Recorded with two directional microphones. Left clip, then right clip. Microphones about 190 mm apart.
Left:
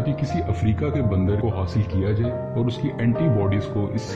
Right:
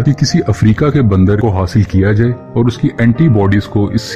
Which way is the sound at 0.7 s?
40° right (ahead or behind).